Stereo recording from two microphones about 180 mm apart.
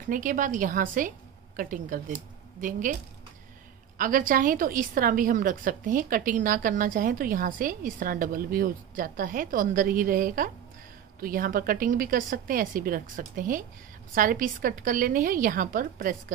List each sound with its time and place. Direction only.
0.1 s a woman's voice: 45° right (ahead or behind)
4.0 s a woman's voice: 50° right (ahead or behind)